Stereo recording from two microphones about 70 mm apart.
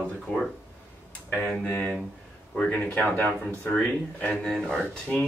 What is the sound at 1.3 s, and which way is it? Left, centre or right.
Speech, centre.